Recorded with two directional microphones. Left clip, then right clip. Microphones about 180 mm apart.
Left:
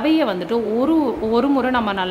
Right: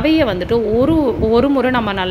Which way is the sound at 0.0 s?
15° right (ahead or behind).